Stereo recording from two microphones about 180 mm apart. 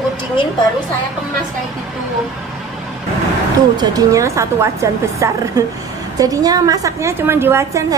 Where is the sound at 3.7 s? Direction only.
20° right (ahead or behind).